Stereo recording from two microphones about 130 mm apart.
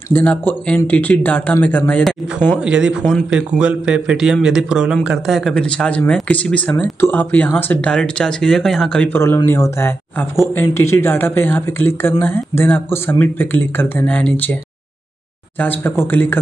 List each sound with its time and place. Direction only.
0.1 s speech: 10° left (ahead or behind)
2.6 s speech: 5° right (ahead or behind)
9.1 s speech: 20° left (ahead or behind)
15.6 s speech: 15° left (ahead or behind)